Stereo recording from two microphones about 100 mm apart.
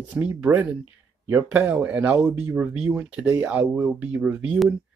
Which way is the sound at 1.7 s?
15° right (ahead or behind).